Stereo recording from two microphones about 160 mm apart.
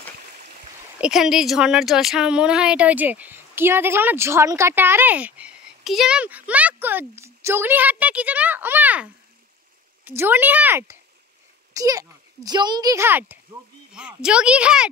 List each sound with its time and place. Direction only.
1.0 s a woman's voice: 5° right (ahead or behind)